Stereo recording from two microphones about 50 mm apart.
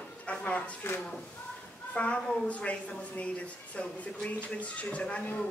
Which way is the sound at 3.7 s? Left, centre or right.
Left.